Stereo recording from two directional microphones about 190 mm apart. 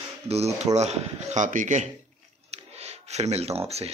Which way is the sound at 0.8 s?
35° right (ahead or behind).